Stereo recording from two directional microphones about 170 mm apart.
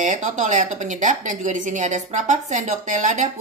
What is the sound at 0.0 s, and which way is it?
A woman's voice, 45° right (ahead or behind).